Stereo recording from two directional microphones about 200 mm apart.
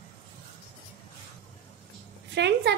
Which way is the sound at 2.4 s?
60° right (ahead or behind).